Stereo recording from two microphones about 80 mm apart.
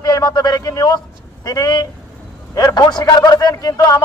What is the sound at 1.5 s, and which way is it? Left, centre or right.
A man's voice, left.